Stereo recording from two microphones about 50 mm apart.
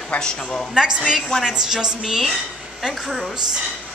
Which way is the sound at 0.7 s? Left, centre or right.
Centre.